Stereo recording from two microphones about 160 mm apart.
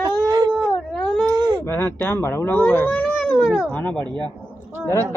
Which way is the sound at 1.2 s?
25° right (ahead or behind).